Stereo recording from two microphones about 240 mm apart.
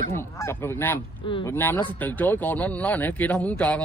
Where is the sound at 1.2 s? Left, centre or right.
Left.